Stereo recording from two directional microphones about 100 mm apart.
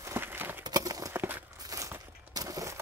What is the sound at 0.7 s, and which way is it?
Clip-clop, 35° right (ahead or behind).